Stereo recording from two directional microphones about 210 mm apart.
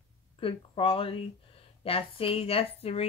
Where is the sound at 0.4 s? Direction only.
25° left (ahead or behind).